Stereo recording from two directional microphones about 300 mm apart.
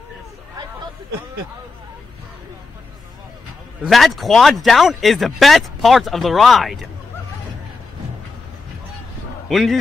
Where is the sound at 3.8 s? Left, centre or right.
Centre.